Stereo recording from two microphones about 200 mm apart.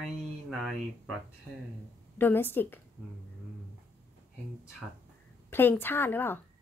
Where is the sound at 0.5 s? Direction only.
Centre (ahead or behind).